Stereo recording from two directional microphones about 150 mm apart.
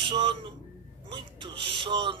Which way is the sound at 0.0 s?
35° right (ahead or behind).